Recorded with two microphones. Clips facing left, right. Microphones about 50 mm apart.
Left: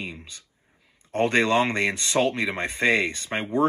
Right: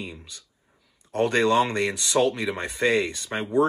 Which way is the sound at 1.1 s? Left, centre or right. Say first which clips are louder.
Even; left.